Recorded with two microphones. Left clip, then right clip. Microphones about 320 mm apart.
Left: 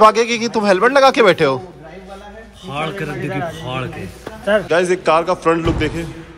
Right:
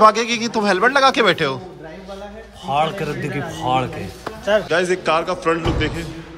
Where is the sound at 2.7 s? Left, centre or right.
Centre.